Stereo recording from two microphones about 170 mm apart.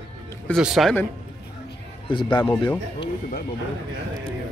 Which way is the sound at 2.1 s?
30° left (ahead or behind).